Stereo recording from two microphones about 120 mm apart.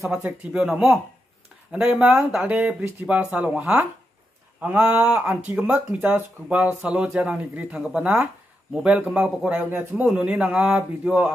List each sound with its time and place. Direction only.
0.2 s speech: 5° right (ahead or behind)